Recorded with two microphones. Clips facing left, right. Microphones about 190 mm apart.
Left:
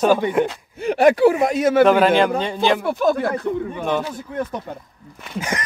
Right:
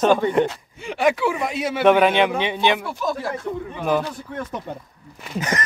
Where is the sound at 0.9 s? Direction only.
40° left (ahead or behind).